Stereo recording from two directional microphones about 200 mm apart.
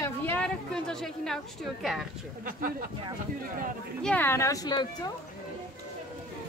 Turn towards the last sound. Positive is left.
turn(degrees=20)  # may be behind; listen again after turning